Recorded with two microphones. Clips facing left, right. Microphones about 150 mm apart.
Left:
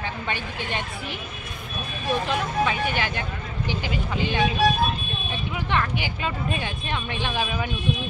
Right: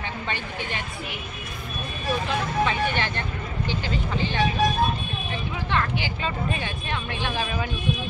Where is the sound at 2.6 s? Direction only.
10° left (ahead or behind).